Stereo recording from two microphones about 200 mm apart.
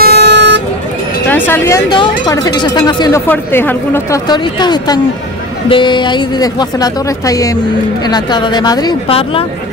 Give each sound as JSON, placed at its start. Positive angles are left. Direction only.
{"t": 0.1, "sound": "vehicle", "side_deg": -60}
{"t": 1.3, "sound": "a woman's voice", "side_deg": 10}
{"t": 1.9, "sound": "a woman's voice", "side_deg": 20}